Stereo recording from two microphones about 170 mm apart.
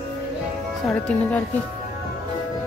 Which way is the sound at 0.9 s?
5° left (ahead or behind).